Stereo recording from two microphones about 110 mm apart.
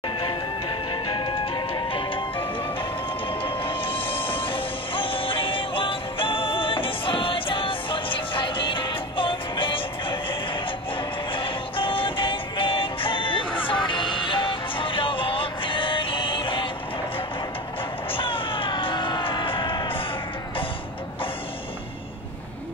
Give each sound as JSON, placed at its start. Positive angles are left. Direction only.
{"t": 0.2, "sound": "music", "side_deg": 45}
{"t": 18.1, "sound": "music", "side_deg": 55}